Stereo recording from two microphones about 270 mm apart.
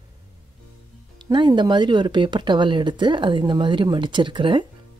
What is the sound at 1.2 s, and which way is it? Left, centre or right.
Speech, centre.